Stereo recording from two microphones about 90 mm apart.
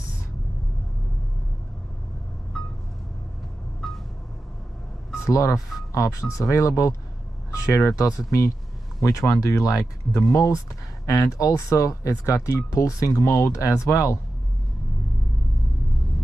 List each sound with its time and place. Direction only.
2.5 s vehicle: centre (ahead or behind)
3.8 s vehicle: centre (ahead or behind)
5.2 s speech: 35° left (ahead or behind)